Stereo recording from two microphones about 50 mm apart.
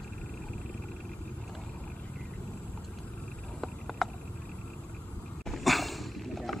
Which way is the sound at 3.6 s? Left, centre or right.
Centre.